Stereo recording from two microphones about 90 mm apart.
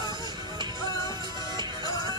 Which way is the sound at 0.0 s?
55° right (ahead or behind).